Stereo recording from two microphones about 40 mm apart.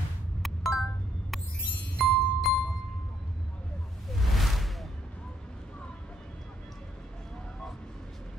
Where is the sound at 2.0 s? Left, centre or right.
Centre.